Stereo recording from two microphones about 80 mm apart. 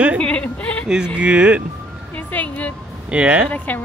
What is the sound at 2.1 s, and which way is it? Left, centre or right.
Music, left.